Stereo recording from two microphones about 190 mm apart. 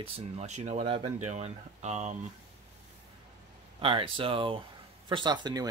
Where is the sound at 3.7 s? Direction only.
30° right (ahead or behind).